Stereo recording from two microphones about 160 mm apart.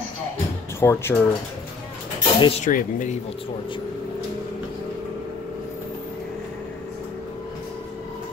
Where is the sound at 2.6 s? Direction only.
50° left (ahead or behind).